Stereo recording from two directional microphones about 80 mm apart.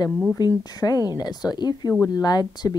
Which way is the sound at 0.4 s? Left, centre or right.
Left.